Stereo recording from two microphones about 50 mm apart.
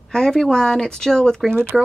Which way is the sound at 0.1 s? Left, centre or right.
Centre.